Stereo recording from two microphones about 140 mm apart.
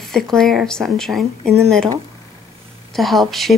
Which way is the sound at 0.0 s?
5° left (ahead or behind).